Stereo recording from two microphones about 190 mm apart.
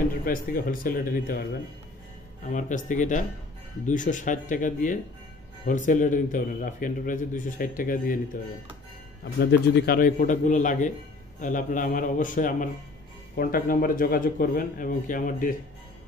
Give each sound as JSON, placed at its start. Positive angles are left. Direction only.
{"t": 0.2, "sound": "a man's voice", "side_deg": 50}
{"t": 2.4, "sound": "a man's voice", "side_deg": 45}
{"t": 9.2, "sound": "a man's voice", "side_deg": 60}